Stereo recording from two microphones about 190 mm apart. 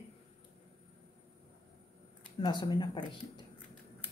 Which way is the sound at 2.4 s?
25° left (ahead or behind).